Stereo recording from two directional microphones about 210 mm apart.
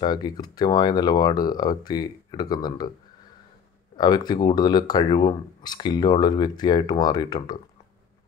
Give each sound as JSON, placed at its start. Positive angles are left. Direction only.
{"t": 0.0, "sound": "speech", "side_deg": 20}
{"t": 3.9, "sound": "speech", "side_deg": 20}